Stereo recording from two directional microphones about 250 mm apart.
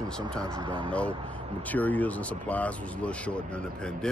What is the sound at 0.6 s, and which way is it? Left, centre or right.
Speech, centre.